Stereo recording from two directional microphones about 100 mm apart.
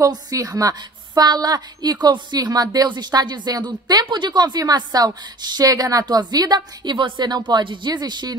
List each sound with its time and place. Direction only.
0.0 s a woman's voice: 35° right (ahead or behind)